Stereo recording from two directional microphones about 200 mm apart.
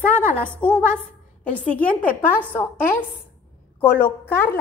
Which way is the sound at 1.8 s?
45° left (ahead or behind).